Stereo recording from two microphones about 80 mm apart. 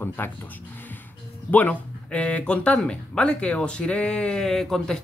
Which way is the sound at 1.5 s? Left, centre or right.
Centre.